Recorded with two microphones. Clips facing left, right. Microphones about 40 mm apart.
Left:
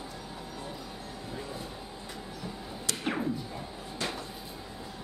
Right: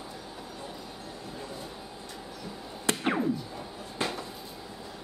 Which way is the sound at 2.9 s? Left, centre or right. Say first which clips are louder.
Right 8 dB; right.